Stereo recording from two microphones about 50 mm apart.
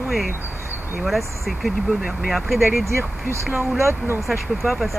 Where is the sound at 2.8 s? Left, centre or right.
Right.